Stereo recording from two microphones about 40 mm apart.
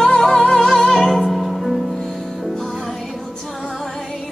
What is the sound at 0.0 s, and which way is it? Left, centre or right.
Music, centre.